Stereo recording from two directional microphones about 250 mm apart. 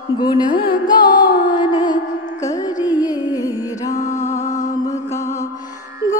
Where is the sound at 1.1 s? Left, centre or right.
Left.